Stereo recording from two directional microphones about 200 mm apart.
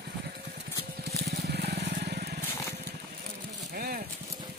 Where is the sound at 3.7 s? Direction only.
50° right (ahead or behind).